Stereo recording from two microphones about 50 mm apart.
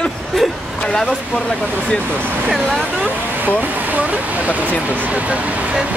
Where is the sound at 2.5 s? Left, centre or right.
Centre.